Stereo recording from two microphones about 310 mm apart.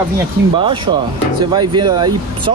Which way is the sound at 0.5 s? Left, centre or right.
Centre.